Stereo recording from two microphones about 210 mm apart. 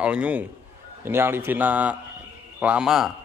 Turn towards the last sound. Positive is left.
turn(degrees=-5)  # may be behind; listen again after turning